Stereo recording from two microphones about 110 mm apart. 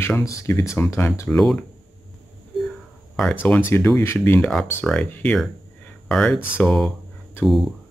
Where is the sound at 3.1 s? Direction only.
10° left (ahead or behind).